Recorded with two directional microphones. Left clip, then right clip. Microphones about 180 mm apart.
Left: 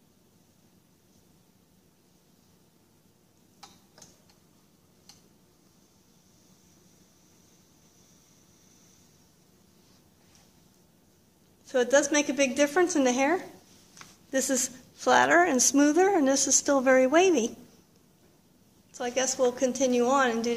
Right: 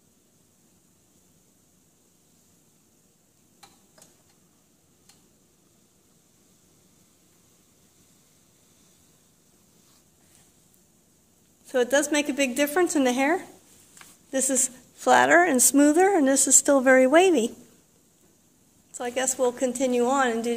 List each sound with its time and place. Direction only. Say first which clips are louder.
11.6 s a woman's voice: right 1 dB; 45° right (ahead or behind)
13.9 s a woman's voice: right 1 dB; 15° right (ahead or behind); by 17.5 s 30° right (ahead or behind)
18.9 s a woman's voice: right 1 dB; 35° right (ahead or behind)